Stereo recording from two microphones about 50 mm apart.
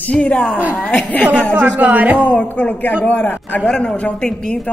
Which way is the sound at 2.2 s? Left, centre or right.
Left.